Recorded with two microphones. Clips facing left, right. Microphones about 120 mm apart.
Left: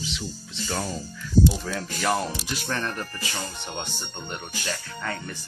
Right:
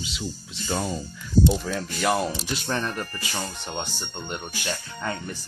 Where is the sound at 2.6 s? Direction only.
20° right (ahead or behind).